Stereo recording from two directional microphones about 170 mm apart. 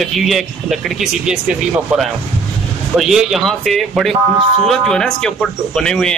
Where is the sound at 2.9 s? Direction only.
Centre (ahead or behind).